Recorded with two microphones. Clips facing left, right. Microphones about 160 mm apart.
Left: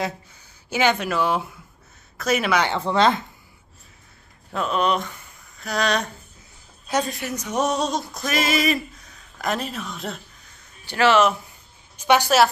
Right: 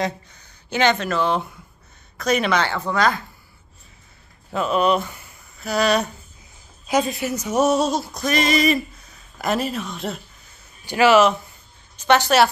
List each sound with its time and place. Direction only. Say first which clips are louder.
0.0 s speech: right 3 dB; 5° left (ahead or behind)
2.6 s speech: left 1 dB; 25° left (ahead or behind)
4.5 s speech: right 3 dB; 5° right (ahead or behind)
12.0 s a woman's voice: right 1 dB; 10° left (ahead or behind)